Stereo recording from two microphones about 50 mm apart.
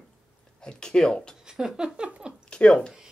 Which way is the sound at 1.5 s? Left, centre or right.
Centre.